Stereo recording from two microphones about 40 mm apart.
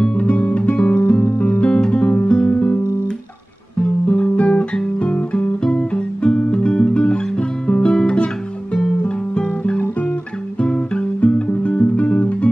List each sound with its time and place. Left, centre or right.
0.2 s guitar: left
1.2 s music: left
1.6 s music: left
3.8 s guitar: left
9.0 s music: left
10.6 s guitar: left